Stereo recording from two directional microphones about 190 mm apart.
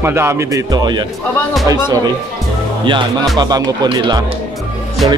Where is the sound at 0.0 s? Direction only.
15° right (ahead or behind).